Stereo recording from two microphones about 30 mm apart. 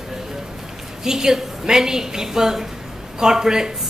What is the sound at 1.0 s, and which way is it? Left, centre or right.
A woman's voice, centre.